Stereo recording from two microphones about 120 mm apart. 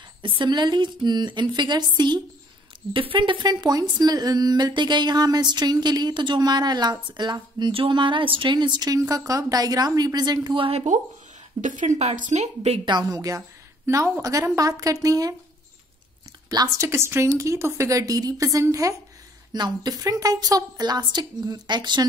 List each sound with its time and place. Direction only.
0.2 s speech: 40° right (ahead or behind)
11.6 s a woman's voice: 90° right; by 12.8 s 65° right (ahead or behind)
12.8 s speech: 35° right (ahead or behind)
16.4 s speech: 30° right (ahead or behind)